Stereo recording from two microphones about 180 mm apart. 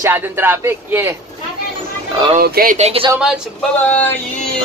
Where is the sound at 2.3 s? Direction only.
55° right (ahead or behind).